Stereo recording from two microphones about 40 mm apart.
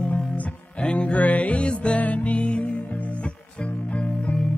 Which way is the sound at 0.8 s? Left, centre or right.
Left.